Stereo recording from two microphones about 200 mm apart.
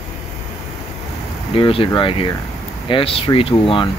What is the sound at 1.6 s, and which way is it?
Speech, 25° left (ahead or behind).